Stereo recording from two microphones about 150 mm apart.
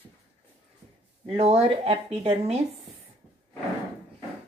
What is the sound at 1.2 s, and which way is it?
Speech, 45° right (ahead or behind).